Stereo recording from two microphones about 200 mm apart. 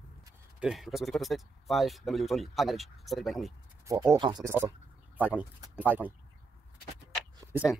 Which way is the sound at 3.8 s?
15° right (ahead or behind).